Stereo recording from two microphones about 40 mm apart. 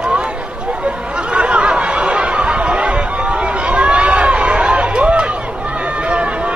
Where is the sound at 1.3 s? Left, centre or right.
Right.